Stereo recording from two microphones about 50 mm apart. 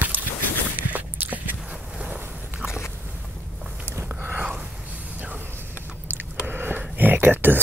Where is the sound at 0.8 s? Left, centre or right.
Right.